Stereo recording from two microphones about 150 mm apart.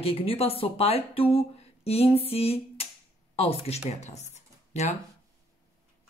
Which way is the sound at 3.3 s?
40° left (ahead or behind).